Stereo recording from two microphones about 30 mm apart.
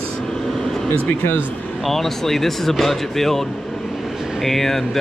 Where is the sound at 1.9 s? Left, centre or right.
Centre.